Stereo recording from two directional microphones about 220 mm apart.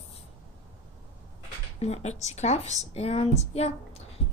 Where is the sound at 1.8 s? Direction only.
30° left (ahead or behind).